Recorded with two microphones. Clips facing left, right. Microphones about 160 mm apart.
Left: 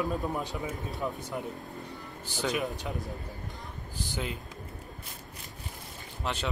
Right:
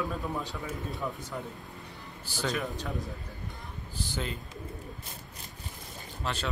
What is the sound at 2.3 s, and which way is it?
Speech, 15° left (ahead or behind).